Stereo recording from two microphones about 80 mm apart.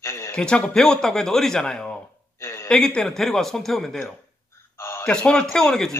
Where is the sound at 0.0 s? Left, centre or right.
Left.